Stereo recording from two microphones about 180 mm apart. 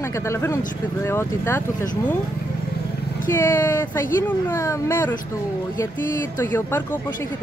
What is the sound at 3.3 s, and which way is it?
Speech, 15° left (ahead or behind).